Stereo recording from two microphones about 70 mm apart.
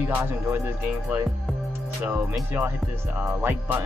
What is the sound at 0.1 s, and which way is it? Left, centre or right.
Music, right.